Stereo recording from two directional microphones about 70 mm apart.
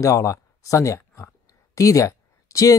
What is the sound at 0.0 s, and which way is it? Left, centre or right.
Speech, left.